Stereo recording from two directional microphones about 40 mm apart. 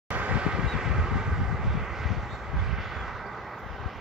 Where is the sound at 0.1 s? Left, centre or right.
Right.